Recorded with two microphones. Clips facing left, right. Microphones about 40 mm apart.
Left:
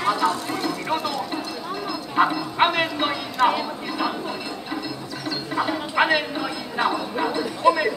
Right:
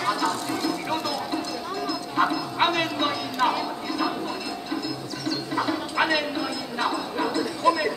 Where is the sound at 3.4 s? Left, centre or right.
Centre.